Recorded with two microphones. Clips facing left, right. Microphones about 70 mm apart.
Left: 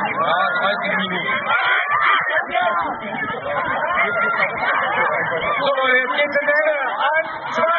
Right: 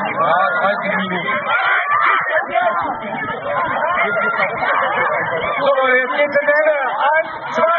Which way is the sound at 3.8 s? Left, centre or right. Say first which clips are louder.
Right 2 dB; centre.